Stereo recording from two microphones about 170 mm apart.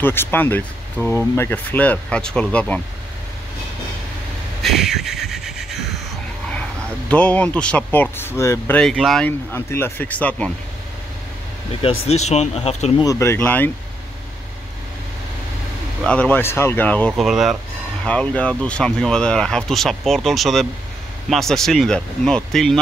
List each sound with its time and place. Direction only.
0.0 s speech: 10° left (ahead or behind)
4.6 s a sound: centre (ahead or behind)
7.1 s speech: 10° left (ahead or behind)
9.5 s speech: 15° left (ahead or behind)
11.8 s speech: 35° left (ahead or behind)
13.0 s speech: 15° left (ahead or behind)
16.0 s speech: 5° left (ahead or behind)
17.3 s speech: centre (ahead or behind)